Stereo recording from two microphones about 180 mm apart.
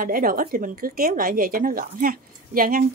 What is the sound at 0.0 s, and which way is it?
Speech, 50° right (ahead or behind).